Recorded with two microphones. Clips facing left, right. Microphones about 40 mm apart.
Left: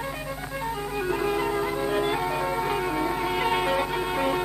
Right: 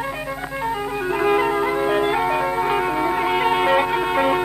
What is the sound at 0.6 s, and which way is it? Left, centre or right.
Music, right.